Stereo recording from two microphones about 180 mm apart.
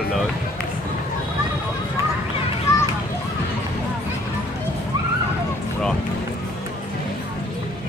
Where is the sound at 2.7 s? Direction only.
15° left (ahead or behind).